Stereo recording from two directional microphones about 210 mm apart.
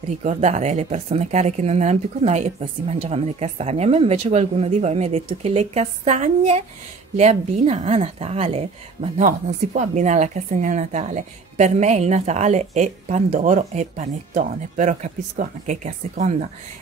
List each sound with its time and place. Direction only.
0.2 s a woman's voice: 35° right (ahead or behind)